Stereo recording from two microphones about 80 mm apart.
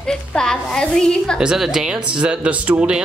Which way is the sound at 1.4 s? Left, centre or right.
Centre.